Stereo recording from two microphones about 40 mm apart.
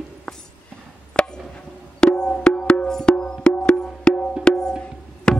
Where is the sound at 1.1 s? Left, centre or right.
Left.